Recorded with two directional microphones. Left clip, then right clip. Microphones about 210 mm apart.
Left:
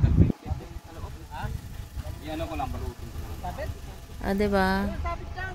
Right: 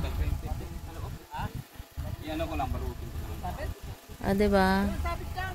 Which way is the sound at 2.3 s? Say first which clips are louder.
Even; 25° right (ahead or behind).